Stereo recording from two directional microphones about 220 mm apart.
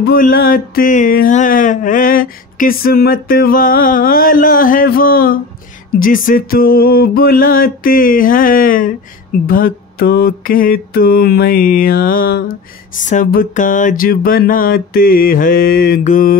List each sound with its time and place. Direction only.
0.0 s speech: 40° left (ahead or behind)
9.5 s mantra: 40° left (ahead or behind)
12.9 s speech: 35° left (ahead or behind)